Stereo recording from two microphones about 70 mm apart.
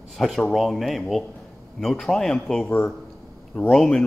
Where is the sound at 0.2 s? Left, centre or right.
Centre.